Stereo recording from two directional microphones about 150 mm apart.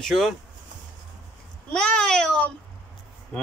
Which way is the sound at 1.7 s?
5° left (ahead or behind).